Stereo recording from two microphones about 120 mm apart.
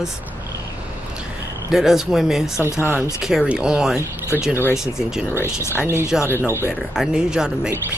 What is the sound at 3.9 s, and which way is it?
Speech, 25° left (ahead or behind).